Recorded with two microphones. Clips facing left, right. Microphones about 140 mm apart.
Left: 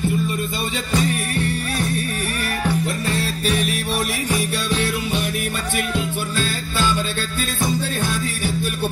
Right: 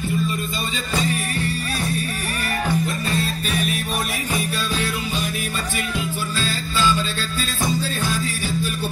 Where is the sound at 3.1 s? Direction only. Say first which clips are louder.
Left 2 dB; 70° left (ahead or behind).